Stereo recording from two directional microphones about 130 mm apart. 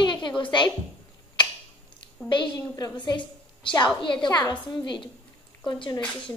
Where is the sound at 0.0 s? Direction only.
35° left (ahead or behind).